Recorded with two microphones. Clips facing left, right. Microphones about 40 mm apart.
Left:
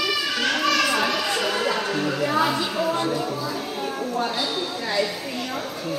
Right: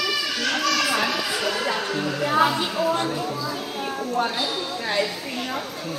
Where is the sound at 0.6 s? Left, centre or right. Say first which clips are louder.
Left 2 dB; left.